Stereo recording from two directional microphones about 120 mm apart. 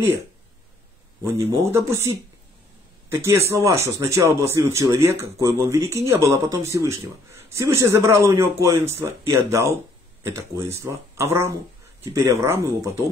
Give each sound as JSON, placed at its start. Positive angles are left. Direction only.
{"t": 1.2, "sound": "speech", "side_deg": -25}